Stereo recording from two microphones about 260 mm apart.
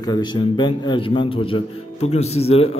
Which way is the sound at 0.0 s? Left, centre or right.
Centre.